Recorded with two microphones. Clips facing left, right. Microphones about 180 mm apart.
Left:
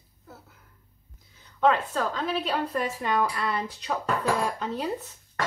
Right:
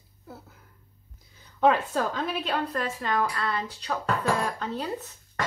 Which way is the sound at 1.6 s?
5° right (ahead or behind).